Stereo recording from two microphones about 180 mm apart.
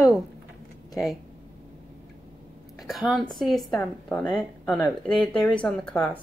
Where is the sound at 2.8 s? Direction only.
5° right (ahead or behind).